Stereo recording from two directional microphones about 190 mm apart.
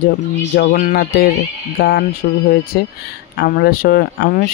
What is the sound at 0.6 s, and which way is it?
Speech, 50° left (ahead or behind).